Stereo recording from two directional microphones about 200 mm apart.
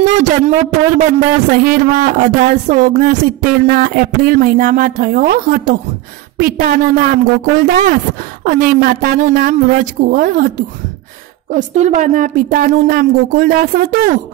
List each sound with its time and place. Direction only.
0.9 s speech: 40° right (ahead or behind)
11.5 s a woman's voice: 35° right (ahead or behind)